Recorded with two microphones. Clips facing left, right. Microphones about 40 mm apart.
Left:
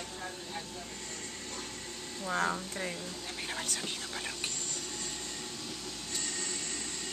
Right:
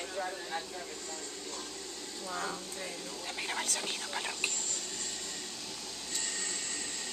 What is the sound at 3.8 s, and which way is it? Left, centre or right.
Speech, centre.